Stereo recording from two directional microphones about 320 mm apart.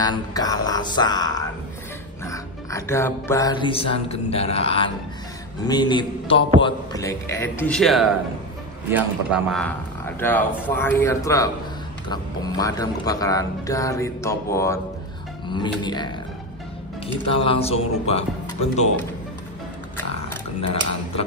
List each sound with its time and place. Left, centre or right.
0.0 s speech: centre